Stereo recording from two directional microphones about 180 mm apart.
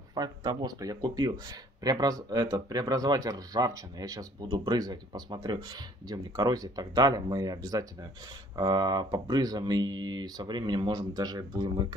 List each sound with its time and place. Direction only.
0.1 s speech: 20° right (ahead or behind)